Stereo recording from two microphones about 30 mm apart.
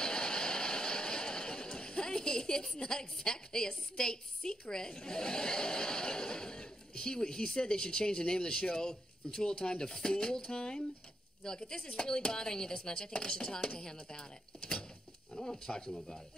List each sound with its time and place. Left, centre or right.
0.0 s vehicle: left
2.8 s a woman's voice: left
9.8 s speech: centre
10.1 s a woman's voice: left
11.4 s a woman's voice: left